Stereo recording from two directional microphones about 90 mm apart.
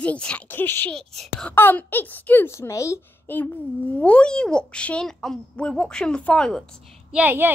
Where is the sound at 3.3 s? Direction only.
20° left (ahead or behind).